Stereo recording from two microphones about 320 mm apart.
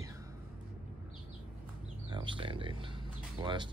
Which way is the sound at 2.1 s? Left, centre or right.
Centre.